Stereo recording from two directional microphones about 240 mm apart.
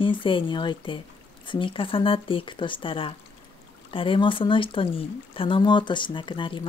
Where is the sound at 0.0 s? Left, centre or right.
Left.